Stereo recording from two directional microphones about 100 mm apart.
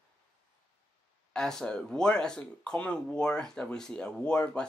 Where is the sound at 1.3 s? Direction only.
5° left (ahead or behind).